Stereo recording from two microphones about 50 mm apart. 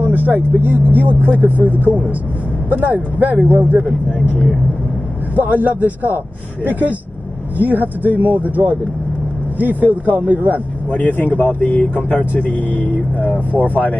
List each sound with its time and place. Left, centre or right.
0.0 s speech: right
5.3 s speech: right
7.6 s speech: right
11.0 s speech: left